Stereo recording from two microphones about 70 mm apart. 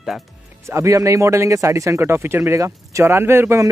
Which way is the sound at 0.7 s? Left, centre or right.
Right.